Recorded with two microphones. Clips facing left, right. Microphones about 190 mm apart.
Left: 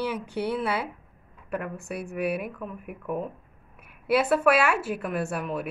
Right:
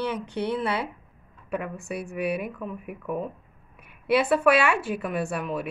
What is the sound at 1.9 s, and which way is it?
Speech, centre (ahead or behind).